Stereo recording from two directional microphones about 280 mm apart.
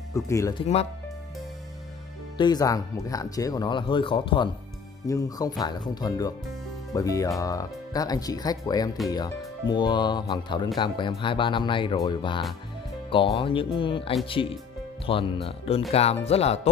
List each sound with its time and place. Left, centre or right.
0.1 s speech: centre
2.3 s speech: centre